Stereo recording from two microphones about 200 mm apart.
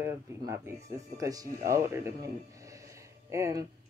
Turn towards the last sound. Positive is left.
turn(degrees=-15)  # may be behind; listen again after turning